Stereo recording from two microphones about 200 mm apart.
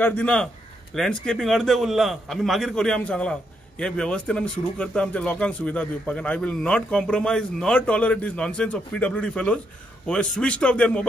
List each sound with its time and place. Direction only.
0.0 s a man's voice: 5° left (ahead or behind)